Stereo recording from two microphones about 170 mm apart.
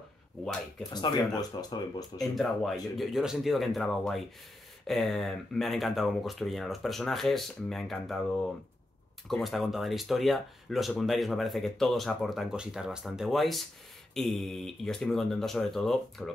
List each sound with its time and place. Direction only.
0.8 s speech: 25° left (ahead or behind)
2.1 s speech: centre (ahead or behind)